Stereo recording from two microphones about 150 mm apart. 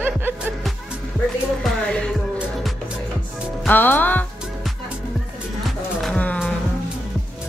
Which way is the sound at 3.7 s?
10° left (ahead or behind).